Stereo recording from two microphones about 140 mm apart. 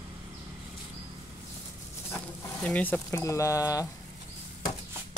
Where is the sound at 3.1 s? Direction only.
20° left (ahead or behind).